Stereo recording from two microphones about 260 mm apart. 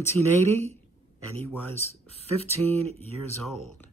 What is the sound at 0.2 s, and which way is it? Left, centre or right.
Speech, centre.